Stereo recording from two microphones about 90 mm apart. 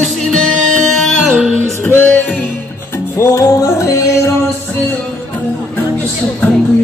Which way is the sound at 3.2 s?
35° left (ahead or behind).